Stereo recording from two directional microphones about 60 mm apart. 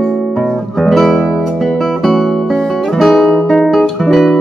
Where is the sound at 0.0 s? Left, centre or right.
Centre.